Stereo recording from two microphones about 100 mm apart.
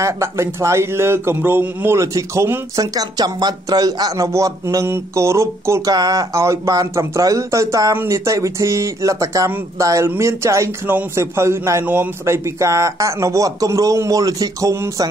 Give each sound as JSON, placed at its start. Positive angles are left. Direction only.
{"t": 0.0, "sound": "speech", "side_deg": -30}
{"t": 2.7, "sound": "speech", "side_deg": -40}